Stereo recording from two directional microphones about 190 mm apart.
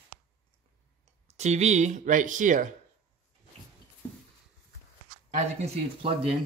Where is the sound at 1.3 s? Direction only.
35° right (ahead or behind).